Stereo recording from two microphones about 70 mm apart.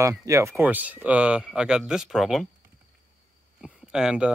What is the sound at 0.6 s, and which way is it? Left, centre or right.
Speech, right.